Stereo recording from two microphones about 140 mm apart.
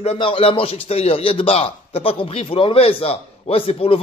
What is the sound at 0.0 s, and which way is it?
A man's voice, 45° left (ahead or behind).